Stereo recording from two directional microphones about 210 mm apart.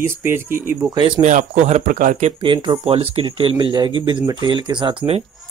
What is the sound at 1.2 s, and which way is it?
Speech, 35° right (ahead or behind).